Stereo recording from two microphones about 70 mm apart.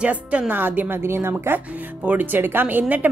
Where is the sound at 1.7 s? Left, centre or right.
Right.